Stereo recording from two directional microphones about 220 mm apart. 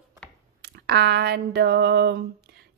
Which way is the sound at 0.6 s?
50° right (ahead or behind).